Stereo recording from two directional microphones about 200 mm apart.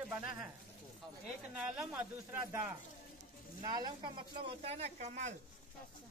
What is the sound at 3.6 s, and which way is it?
Speech, 20° right (ahead or behind).